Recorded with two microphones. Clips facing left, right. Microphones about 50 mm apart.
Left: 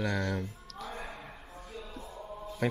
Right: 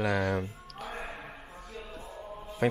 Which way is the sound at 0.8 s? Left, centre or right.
Centre.